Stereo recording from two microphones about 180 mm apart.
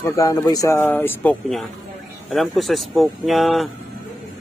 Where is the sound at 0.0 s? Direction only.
20° left (ahead or behind).